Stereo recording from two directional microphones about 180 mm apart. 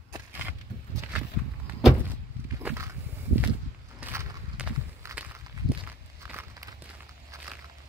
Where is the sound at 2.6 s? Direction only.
15° right (ahead or behind).